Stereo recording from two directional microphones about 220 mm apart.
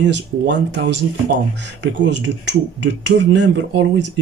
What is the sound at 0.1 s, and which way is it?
Speech, 55° right (ahead or behind).